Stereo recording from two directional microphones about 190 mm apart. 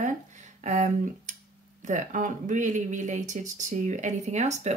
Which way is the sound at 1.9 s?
40° right (ahead or behind).